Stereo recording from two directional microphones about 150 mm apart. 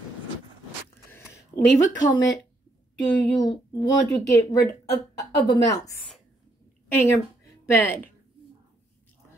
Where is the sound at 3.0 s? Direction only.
25° left (ahead or behind).